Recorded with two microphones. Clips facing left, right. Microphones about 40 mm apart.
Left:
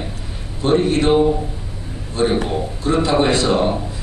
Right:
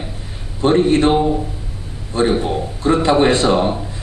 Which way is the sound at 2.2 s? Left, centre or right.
Right.